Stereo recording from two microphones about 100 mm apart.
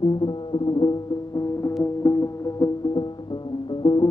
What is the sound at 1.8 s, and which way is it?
Music, 30° left (ahead or behind).